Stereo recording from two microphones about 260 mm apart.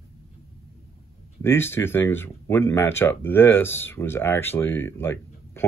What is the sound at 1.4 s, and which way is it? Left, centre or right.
Speech, centre.